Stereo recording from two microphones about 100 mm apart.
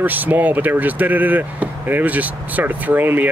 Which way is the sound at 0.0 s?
20° right (ahead or behind).